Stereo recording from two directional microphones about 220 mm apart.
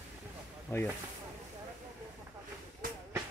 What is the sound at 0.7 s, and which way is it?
Speech, 10° left (ahead or behind).